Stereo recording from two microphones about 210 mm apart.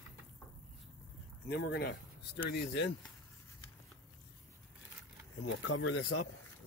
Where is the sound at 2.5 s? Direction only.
60° left (ahead or behind).